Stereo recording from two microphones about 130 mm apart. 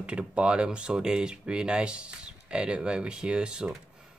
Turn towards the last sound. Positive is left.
turn(degrees=-5)  # may be behind; listen again after turning